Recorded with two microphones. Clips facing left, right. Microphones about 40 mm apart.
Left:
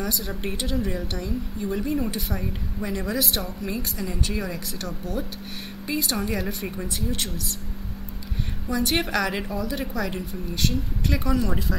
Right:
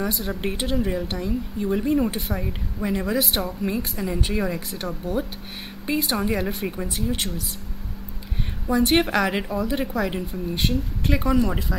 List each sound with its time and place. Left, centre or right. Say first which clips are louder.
0.0 s speech: right 3 dB; centre
8.6 s speech: right 5 dB; right; by 11.8 s centre